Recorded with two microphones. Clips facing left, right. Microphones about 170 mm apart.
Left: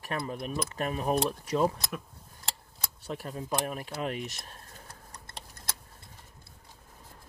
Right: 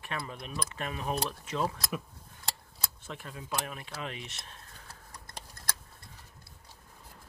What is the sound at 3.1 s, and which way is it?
Speech, 40° left (ahead or behind).